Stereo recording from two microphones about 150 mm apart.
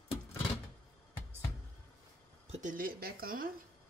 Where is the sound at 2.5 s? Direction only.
60° right (ahead or behind).